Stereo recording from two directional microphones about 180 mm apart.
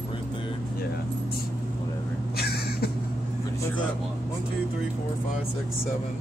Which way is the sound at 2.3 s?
60° left (ahead or behind).